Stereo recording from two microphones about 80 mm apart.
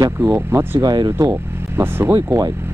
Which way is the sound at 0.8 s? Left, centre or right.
Right.